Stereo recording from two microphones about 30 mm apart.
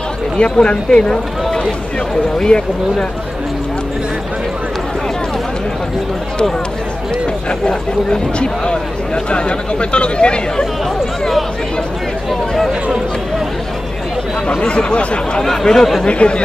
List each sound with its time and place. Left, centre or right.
0.4 s speech: left
7.6 s speech: left
14.7 s speech: left
15.6 s speech: centre
16.0 s speech: left